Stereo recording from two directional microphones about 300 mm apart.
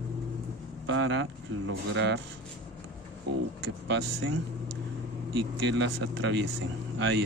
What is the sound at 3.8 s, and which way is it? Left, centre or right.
Speech, right.